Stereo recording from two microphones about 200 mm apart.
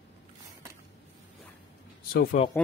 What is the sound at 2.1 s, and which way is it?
Speech, 50° left (ahead or behind).